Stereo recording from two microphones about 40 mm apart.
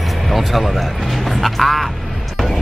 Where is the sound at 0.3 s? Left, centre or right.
Centre.